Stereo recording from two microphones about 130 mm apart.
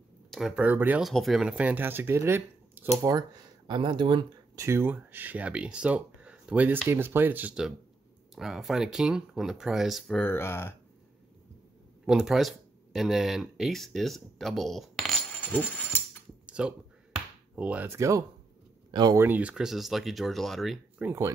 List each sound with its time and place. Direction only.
0.3 s speech: 5° right (ahead or behind)
1.0 s speech: centre (ahead or behind); by 4.2 s 40° right (ahead or behind)
4.6 s speech: 20° right (ahead or behind); by 10.2 s centre (ahead or behind)
10.2 s speech: 20° left (ahead or behind)
12.1 s speech: centre (ahead or behind)
16.4 s a sound: 5° right (ahead or behind)
17.8 s speech: 25° right (ahead or behind)
18.9 s speech: 35° right (ahead or behind)
19.1 s speech: 15° right (ahead or behind)
21.0 s speech: 20° right (ahead or behind)